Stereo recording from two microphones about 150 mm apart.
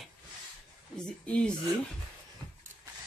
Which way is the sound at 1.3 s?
5° left (ahead or behind).